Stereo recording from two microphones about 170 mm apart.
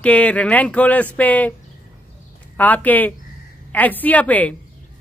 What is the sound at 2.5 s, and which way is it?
Speech, 10° left (ahead or behind).